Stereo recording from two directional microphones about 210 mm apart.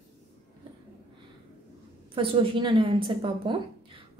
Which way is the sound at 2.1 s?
25° right (ahead or behind).